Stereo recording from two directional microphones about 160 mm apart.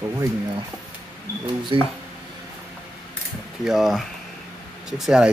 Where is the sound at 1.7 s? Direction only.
30° right (ahead or behind).